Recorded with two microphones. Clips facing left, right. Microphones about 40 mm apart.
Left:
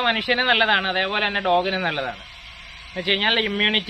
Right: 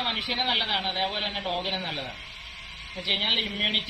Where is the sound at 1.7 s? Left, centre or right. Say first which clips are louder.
Left 9 dB; left.